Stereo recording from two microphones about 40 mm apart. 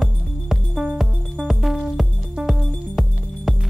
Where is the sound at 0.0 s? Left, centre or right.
Centre.